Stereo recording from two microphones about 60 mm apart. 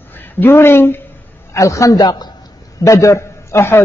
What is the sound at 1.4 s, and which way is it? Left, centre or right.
Speech, left.